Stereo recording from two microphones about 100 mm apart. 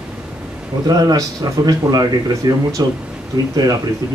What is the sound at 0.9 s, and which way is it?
Speech, 40° right (ahead or behind).